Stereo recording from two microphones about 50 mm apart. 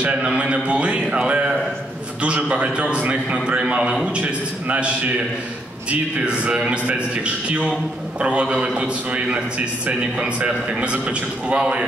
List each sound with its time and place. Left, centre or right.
0.0 s a man's voice: right